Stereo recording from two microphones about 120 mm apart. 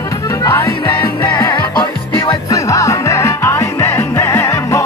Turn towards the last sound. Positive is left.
turn(degrees=20)  # may be behind; listen again after turning